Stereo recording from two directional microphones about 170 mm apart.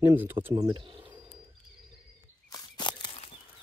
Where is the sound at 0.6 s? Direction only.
30° right (ahead or behind).